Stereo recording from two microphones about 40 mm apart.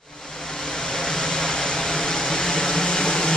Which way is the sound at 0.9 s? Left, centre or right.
Centre.